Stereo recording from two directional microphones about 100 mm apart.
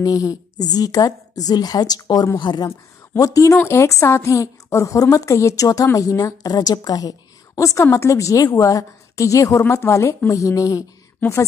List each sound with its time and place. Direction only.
0.0 s a woman's voice: 35° left (ahead or behind)
3.2 s a woman's voice: 35° left (ahead or behind)
11.1 s a woman's voice: 20° left (ahead or behind)